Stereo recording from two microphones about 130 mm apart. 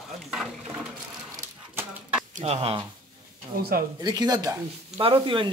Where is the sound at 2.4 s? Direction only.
50° right (ahead or behind).